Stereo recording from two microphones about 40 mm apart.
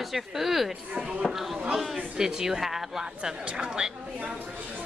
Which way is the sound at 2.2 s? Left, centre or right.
Centre.